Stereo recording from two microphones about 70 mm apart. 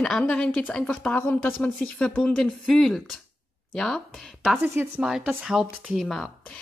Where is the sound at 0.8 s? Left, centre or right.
Centre.